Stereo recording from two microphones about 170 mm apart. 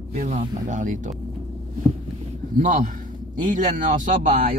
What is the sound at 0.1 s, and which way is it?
Speech, 40° right (ahead or behind).